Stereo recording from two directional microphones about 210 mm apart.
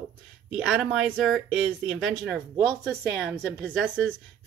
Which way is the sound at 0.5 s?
5° right (ahead or behind).